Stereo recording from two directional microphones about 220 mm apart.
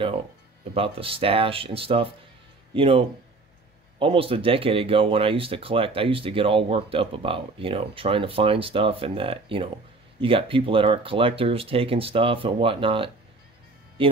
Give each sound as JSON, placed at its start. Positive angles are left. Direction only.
{"t": 0.7, "sound": "speech", "side_deg": -25}